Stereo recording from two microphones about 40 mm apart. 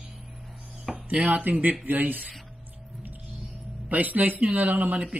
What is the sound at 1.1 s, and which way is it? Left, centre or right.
A man's voice, right.